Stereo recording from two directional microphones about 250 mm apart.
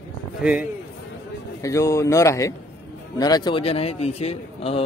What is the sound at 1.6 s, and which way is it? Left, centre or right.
A man's voice, centre.